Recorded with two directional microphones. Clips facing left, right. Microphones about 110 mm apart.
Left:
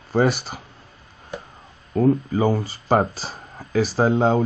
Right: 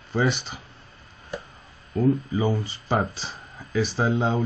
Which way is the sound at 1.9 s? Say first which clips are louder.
Left 4 dB; 50° left (ahead or behind).